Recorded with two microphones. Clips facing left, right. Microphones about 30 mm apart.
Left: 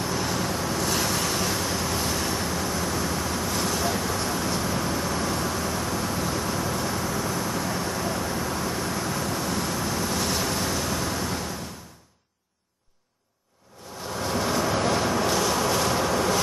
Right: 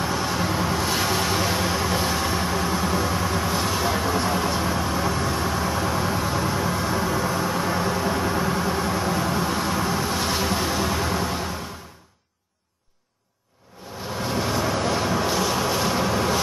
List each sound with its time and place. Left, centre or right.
0.0 s vehicle: centre
14.1 s vehicle: centre